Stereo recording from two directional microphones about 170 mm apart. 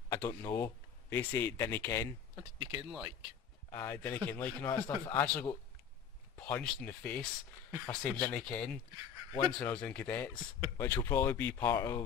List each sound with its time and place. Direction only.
0.1 s speech: 15° left (ahead or behind)
2.3 s speech: 25° right (ahead or behind)
3.7 s a man's voice: 10° left (ahead or behind)